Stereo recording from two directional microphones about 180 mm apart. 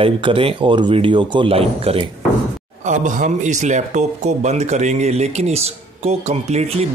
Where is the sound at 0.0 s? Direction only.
30° right (ahead or behind).